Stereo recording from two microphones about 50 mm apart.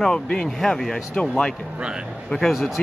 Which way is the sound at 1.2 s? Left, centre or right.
Left.